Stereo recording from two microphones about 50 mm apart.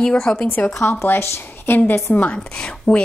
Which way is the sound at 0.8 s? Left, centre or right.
Left.